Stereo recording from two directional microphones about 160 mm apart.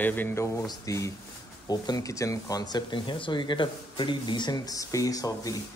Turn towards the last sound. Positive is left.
turn(degrees=20)  # may be behind; listen again after turning